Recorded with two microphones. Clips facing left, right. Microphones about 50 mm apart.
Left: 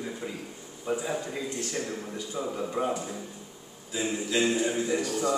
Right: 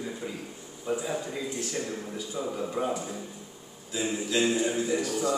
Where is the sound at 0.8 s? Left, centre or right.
Left.